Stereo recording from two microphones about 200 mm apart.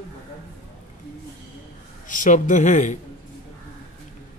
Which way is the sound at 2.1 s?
40° left (ahead or behind).